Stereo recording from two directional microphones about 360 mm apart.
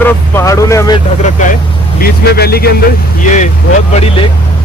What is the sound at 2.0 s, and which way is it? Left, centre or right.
Speech, left.